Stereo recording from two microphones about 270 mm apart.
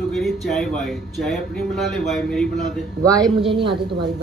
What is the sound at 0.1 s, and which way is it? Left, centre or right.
A man's voice, centre.